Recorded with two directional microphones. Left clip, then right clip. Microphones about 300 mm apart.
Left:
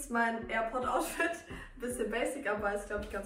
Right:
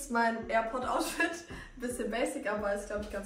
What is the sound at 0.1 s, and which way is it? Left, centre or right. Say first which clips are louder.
Speech: right 3 dB; centre.